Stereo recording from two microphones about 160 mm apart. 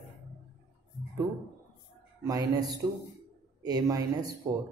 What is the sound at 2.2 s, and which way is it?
A man's voice, 20° right (ahead or behind).